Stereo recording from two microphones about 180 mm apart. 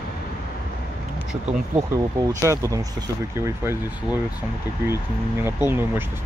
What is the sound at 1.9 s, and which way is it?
Speech, 20° right (ahead or behind).